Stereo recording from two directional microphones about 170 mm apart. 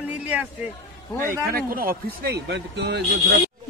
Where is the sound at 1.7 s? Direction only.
60° right (ahead or behind); by 3.3 s 80° right.